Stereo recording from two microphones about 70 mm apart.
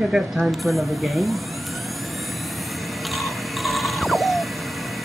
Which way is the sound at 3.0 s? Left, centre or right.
Centre.